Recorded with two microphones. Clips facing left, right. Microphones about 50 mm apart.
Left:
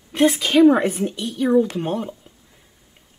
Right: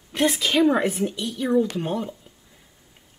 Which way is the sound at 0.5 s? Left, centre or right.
Centre.